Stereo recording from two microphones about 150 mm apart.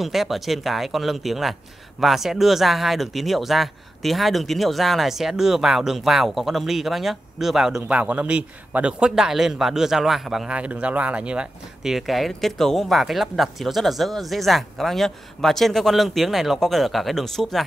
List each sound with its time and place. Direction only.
0.0 s speech: centre (ahead or behind)